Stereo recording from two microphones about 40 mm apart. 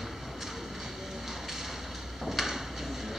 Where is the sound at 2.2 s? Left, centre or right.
Centre.